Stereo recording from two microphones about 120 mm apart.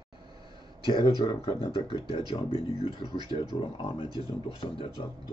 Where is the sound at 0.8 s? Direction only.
40° left (ahead or behind).